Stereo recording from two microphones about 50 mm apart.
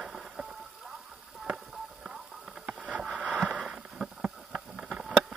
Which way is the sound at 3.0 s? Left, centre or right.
Centre.